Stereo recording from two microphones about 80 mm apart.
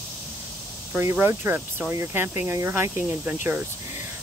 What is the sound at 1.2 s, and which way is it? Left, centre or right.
Speech, right.